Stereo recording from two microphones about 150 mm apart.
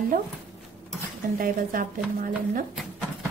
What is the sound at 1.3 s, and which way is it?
Speech, 70° right (ahead or behind).